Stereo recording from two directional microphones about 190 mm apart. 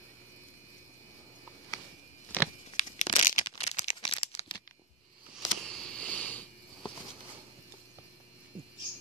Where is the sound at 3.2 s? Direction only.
35° left (ahead or behind).